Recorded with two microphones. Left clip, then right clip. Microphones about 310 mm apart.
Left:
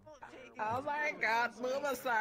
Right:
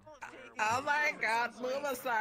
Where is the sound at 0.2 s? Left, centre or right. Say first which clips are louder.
Right 5 dB; right.